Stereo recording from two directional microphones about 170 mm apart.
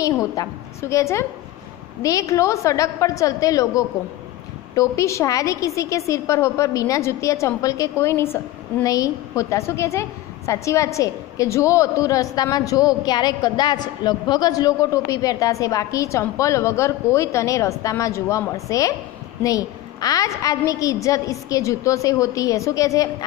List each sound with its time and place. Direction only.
0.0 s a woman's voice: 20° left (ahead or behind)